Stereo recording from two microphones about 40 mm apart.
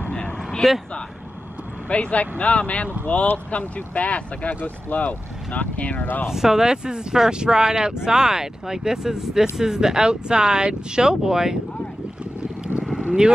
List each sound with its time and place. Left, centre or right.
0.1 s a sound: left
1.9 s speech: left
6.2 s speech: centre